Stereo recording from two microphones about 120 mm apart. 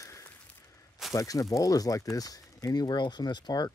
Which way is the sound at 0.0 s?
25° left (ahead or behind).